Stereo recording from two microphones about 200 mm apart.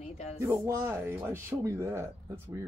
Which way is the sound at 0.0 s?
35° left (ahead or behind).